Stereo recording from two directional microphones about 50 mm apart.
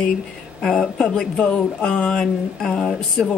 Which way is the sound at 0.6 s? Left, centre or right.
Centre.